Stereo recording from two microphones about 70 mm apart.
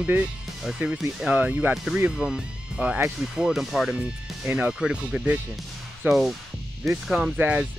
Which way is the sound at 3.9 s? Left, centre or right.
Centre.